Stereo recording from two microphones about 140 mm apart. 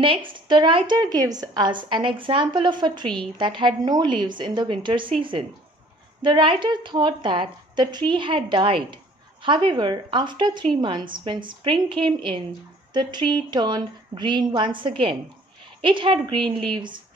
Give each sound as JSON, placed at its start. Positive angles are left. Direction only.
{"t": 0.0, "sound": "a woman's voice", "side_deg": -40}